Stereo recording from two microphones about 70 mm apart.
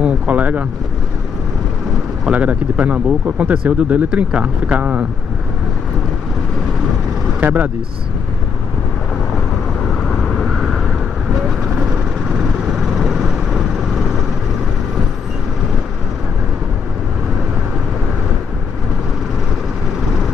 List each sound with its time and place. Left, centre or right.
0.0 s boat: right
2.2 s speech: centre
7.3 s speech: right
10.3 s vehicle: centre
12.3 s vehicle: centre